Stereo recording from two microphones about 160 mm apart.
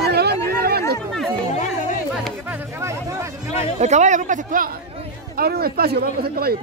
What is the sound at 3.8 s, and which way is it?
Speech, 45° right (ahead or behind).